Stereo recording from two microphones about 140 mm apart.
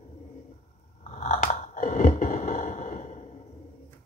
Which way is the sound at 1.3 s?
70° left (ahead or behind).